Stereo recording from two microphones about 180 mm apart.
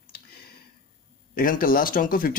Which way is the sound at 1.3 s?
50° left (ahead or behind).